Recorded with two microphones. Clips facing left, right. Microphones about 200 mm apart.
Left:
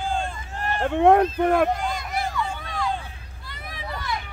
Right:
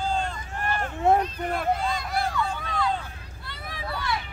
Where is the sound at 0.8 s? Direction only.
85° left.